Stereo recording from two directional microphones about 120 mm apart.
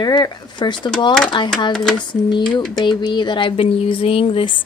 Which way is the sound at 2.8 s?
40° left (ahead or behind).